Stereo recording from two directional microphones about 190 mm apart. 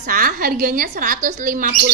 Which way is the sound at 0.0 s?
45° right (ahead or behind).